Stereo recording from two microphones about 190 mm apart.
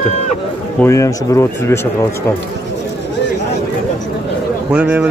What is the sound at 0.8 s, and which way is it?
Speech, 15° left (ahead or behind).